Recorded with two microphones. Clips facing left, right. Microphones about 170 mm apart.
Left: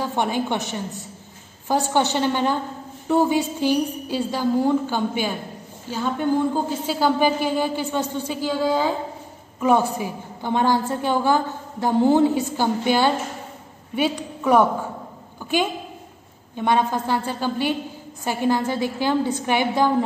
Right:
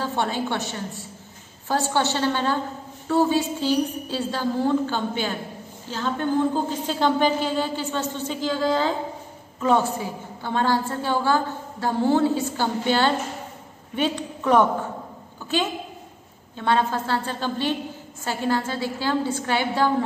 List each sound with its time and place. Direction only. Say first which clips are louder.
0.0 s a woman's voice: left 2 dB; 15° left (ahead or behind)
16.5 s a woman's voice: left 2 dB; 15° left (ahead or behind)